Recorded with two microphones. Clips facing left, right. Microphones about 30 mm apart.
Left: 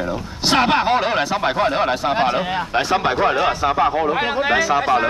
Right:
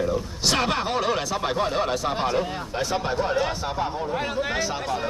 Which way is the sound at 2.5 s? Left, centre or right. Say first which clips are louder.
Left 8 dB; left.